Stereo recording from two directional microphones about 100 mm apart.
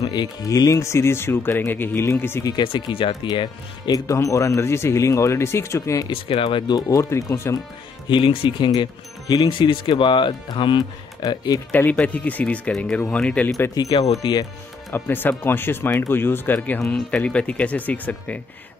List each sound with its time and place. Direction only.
0.0 s speech: 45° left (ahead or behind); by 2.4 s 25° left (ahead or behind)
2.6 s speech: 65° left (ahead or behind)
3.3 s speech: 45° left (ahead or behind)
4.1 s speech: 30° left (ahead or behind)
6.2 s speech: 70° left (ahead or behind)
6.7 s speech: 30° left (ahead or behind)
8.1 s speech: 60° left (ahead or behind); by 11.6 s 40° left (ahead or behind)
11.7 s speech: 15° left (ahead or behind)
13.7 s speech: 40° left (ahead or behind)
14.2 s speech: 55° left (ahead or behind)
14.9 s speech: 20° left (ahead or behind)